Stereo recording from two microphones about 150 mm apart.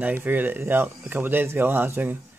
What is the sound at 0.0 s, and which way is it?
Speech, 10° right (ahead or behind).